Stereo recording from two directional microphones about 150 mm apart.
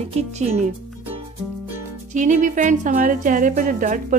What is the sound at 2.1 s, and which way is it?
A woman's voice, 55° right (ahead or behind).